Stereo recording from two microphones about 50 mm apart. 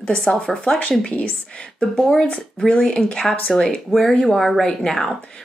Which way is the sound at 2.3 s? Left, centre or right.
Centre.